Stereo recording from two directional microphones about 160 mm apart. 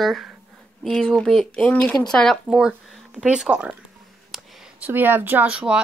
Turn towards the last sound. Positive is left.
turn(degrees=-5)  # may be behind; listen again after turning